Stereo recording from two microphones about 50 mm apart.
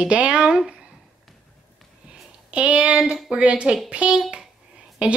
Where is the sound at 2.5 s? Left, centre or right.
Right.